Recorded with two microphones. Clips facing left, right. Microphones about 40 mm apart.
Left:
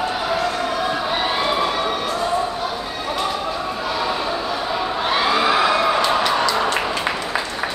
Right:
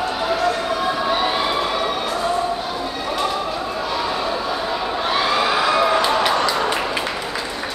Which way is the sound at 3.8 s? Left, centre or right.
Centre.